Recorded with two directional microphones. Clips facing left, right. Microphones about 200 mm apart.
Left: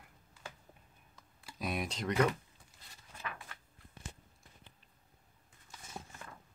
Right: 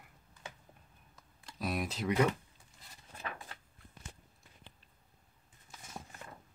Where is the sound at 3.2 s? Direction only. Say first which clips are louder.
Right 1 dB; 30° right (ahead or behind).